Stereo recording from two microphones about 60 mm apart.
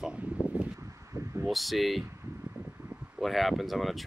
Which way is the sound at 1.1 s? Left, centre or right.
Right.